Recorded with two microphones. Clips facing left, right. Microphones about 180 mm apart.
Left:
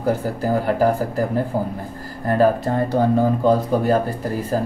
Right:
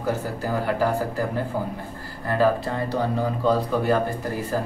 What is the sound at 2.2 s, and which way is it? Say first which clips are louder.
Speech: left 4 dB; 45° left (ahead or behind).